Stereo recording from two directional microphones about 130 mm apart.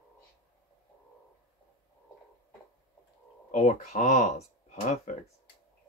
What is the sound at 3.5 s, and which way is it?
Speech, 80° left.